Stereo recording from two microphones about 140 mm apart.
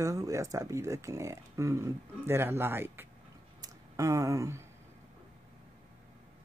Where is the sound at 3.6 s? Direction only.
20° right (ahead or behind).